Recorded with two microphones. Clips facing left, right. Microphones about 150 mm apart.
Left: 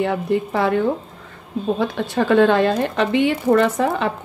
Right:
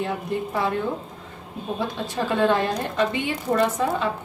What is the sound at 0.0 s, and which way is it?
Speech, 75° left (ahead or behind).